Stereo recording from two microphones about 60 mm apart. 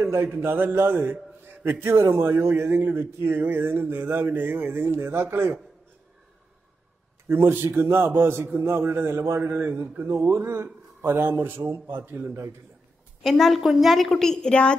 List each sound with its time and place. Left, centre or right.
0.0 s a man's voice: right
1.9 s a man's voice: right
7.2 s a man's voice: right
9.4 s a man's voice: right
13.2 s a woman's voice: centre